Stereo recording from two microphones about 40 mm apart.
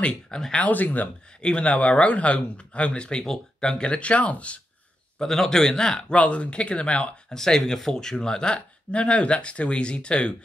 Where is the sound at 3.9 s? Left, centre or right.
Left.